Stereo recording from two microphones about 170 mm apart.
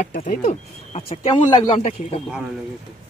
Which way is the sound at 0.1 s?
50° left (ahead or behind).